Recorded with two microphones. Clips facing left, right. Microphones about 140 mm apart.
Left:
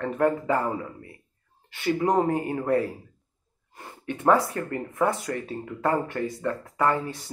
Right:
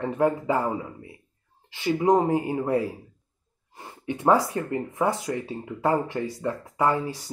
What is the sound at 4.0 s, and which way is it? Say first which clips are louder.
Speech: even; 20° right (ahead or behind).